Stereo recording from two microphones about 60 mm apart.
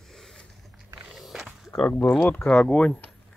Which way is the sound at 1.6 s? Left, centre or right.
Centre.